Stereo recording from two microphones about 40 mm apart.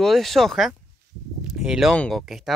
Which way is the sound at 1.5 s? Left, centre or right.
Centre.